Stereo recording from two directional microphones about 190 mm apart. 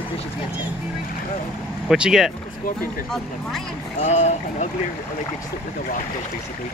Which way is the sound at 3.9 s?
35° left (ahead or behind).